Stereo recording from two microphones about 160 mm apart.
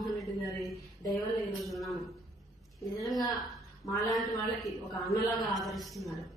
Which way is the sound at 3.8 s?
20° left (ahead or behind).